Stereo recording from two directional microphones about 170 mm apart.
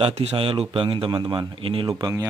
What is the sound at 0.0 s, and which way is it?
A man's voice, 40° right (ahead or behind).